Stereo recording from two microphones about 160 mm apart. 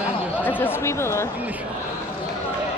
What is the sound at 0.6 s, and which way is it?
Speech, 15° left (ahead or behind).